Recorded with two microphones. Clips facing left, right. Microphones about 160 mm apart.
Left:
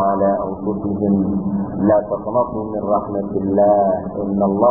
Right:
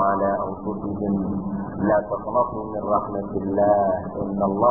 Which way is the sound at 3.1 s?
40° left (ahead or behind).